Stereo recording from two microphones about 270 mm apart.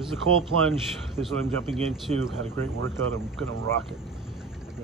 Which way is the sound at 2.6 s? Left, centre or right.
Right.